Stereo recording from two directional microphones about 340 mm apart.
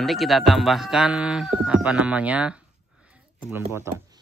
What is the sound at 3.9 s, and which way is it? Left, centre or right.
Speech, centre.